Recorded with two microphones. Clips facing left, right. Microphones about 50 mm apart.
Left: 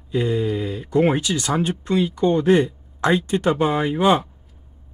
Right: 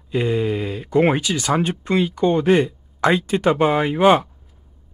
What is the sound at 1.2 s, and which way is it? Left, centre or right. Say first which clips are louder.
Speech: right 2 dB; centre.